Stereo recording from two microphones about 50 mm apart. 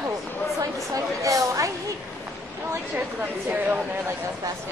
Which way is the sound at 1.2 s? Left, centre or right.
Right.